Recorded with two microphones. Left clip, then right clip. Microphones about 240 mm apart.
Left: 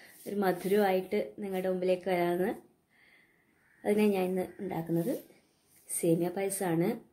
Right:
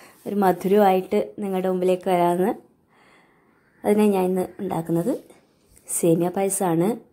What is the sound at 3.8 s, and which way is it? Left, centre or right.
Speech, right.